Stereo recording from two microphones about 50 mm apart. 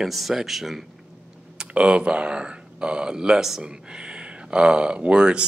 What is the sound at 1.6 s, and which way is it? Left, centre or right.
Speech, right.